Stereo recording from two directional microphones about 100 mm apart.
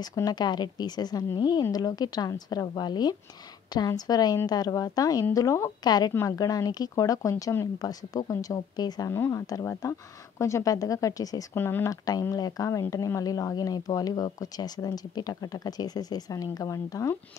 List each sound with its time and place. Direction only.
0.0 s speech: 40° left (ahead or behind)
9.1 s speech: 25° left (ahead or behind)
9.5 s speech: 35° left (ahead or behind)
11.5 s speech: 25° left (ahead or behind)
11.9 s speech: 35° left (ahead or behind)